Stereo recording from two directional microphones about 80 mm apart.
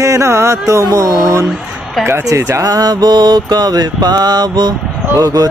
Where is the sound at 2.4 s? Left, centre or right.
Right.